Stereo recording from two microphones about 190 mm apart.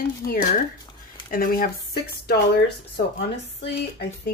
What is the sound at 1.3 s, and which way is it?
Speech, 50° left (ahead or behind).